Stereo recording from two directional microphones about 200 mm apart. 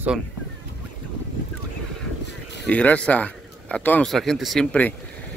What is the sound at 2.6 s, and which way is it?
A man's voice, 5° left (ahead or behind).